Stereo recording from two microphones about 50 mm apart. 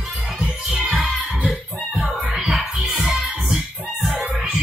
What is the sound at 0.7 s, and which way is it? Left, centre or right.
Music, centre.